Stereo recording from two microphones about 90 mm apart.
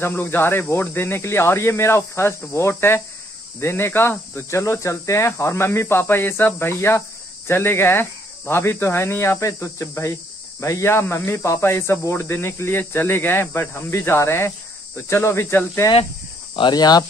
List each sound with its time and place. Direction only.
0.0 s speech: 25° left (ahead or behind)
16.5 s speech: 55° left (ahead or behind)